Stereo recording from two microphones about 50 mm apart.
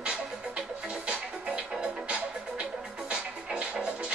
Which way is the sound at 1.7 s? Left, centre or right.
Centre.